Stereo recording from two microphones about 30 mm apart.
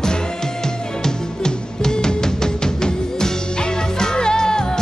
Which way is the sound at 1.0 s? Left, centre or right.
Left.